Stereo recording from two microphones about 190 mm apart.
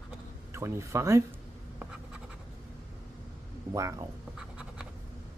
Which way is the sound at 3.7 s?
15° right (ahead or behind).